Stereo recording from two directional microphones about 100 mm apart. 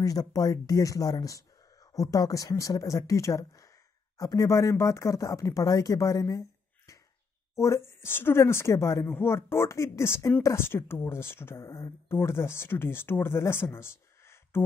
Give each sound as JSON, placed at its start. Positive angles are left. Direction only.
{"t": 0.0, "sound": "speech", "side_deg": 35}
{"t": 7.5, "sound": "speech", "side_deg": 30}